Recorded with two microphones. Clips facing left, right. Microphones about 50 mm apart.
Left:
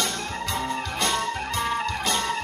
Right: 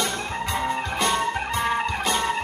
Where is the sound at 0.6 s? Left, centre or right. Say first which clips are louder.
Right 4 dB; centre.